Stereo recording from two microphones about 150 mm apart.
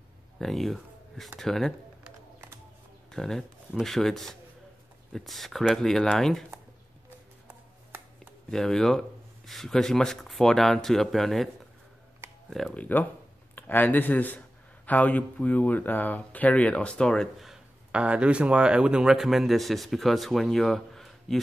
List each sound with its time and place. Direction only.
0.4 s speech: centre (ahead or behind)
3.1 s speech: 5° left (ahead or behind)
8.5 s speech: 5° left (ahead or behind)
12.4 s speech: 5° left (ahead or behind)